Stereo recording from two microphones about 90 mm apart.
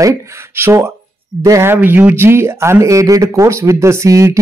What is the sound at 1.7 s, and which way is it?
Speech, 25° right (ahead or behind).